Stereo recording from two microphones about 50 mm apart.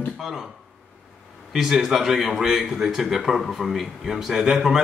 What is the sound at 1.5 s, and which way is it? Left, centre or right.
A man's voice, centre.